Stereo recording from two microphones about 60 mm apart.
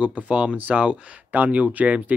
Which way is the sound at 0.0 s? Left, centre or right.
Right.